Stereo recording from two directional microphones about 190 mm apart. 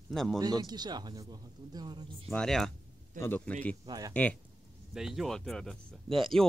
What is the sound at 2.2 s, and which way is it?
A man's voice, centre (ahead or behind).